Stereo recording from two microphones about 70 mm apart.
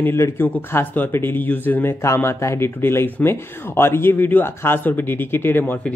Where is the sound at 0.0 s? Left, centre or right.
Left.